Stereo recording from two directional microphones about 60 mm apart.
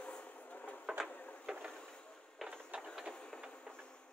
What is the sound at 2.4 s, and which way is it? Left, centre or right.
Train, centre.